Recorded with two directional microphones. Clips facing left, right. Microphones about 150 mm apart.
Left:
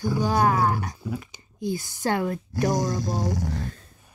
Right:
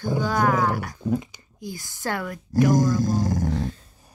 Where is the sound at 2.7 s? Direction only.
50° right (ahead or behind).